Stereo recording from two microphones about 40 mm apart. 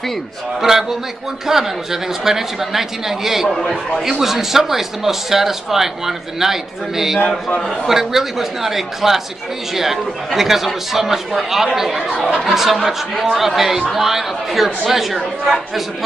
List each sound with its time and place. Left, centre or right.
0.6 s a man's voice: centre